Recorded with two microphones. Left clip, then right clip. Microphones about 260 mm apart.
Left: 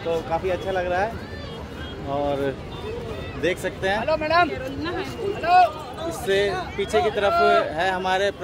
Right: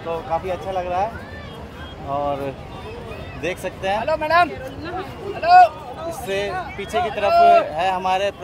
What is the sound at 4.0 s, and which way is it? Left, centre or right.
Speech, right.